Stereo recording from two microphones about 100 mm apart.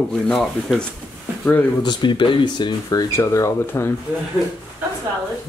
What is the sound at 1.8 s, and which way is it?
Speech, 50° left (ahead or behind).